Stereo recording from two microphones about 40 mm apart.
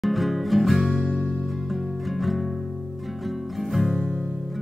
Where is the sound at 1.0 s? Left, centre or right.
Left.